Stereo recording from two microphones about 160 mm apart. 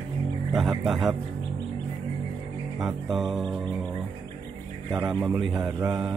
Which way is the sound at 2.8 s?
Centre (ahead or behind).